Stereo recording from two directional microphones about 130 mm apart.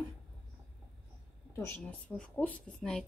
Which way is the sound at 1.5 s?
20° left (ahead or behind).